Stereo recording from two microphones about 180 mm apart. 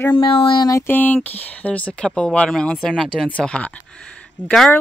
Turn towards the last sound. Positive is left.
turn(degrees=5)  # may be behind; listen again after turning